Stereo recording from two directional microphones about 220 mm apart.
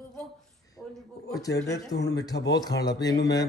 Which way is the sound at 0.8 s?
Centre (ahead or behind).